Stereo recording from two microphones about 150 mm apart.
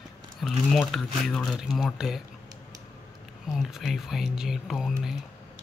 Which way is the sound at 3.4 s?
Centre (ahead or behind).